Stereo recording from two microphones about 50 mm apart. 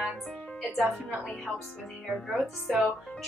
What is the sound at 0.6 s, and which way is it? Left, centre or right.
Music, centre.